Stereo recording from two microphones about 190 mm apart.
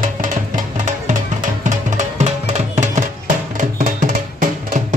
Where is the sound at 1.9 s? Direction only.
40° right (ahead or behind).